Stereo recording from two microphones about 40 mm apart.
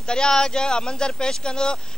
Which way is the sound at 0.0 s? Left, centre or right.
Centre.